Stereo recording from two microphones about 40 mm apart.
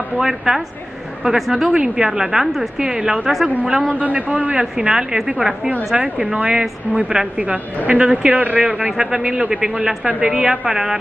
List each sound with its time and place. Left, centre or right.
0.2 s a woman's voice: centre
3.9 s a man's voice: right
4.7 s a woman's voice: centre
6.3 s a man's voice: right
8.1 s a man's voice: right
8.4 s a man's voice: right
8.6 s a man's voice: centre